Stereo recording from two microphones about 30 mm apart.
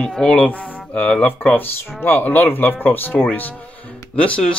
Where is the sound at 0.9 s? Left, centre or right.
Left.